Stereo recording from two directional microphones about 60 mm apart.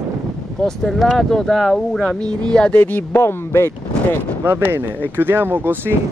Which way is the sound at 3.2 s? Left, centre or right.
Left.